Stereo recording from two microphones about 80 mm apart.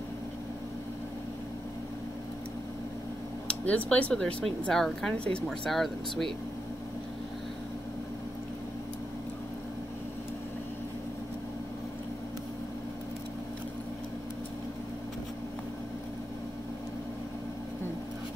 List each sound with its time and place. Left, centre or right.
3.4 s speech: centre
5.7 s speech: centre